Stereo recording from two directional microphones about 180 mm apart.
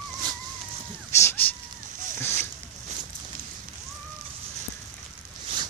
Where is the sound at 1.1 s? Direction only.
15° left (ahead or behind).